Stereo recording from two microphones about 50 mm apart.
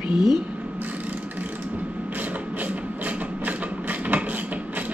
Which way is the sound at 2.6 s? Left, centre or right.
Right.